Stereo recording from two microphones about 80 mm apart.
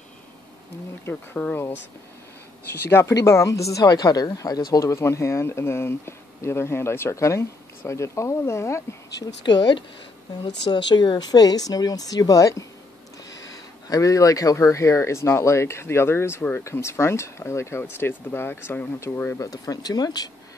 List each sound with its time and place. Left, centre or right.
1.3 s speech: centre
2.9 s speech: left
3.2 s speech: left
9.5 s speech: left
19.4 s speech: left